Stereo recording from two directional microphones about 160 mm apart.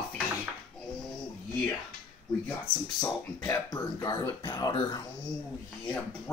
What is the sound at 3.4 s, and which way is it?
Throat clearing, 25° left (ahead or behind).